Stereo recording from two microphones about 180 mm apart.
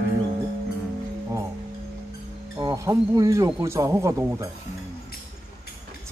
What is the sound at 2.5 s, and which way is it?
A man's voice, 20° right (ahead or behind).